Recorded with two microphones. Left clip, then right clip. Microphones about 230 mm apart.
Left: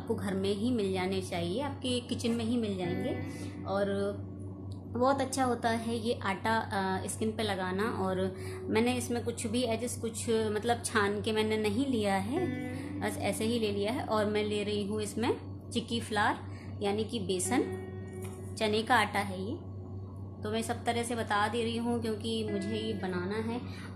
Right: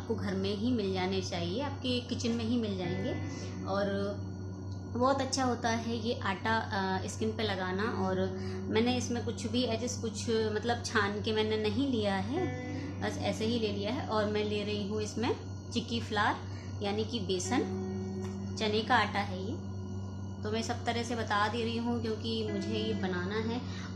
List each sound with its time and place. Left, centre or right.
0.2 s a woman's voice: left
18.6 s a woman's voice: left
20.4 s a woman's voice: left